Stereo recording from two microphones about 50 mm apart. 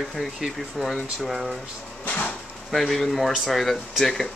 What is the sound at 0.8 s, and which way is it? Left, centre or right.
Speech, centre.